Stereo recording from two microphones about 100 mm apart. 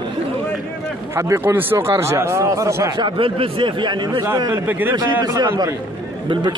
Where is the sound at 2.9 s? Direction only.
55° right (ahead or behind).